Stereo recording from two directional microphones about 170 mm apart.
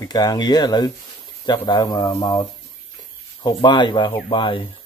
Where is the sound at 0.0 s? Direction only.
25° left (ahead or behind).